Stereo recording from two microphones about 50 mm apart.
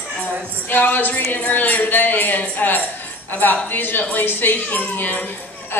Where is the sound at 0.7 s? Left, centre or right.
Left.